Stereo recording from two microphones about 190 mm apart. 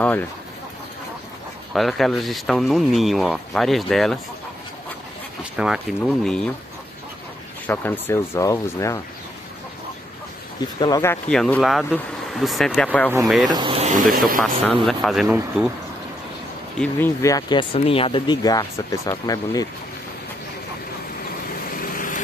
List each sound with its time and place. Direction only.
1.7 s speech: centre (ahead or behind)
5.4 s speech: 5° right (ahead or behind)
7.6 s speech: 10° left (ahead or behind)
10.8 s speech: 15° left (ahead or behind)
13.5 s speech: 25° right (ahead or behind); by 14.2 s 45° right (ahead or behind)
14.9 s speech: centre (ahead or behind)
16.7 s speech: 5° left (ahead or behind)
17.2 s speech: 20° left (ahead or behind)
21.6 s vehicle: 45° left (ahead or behind)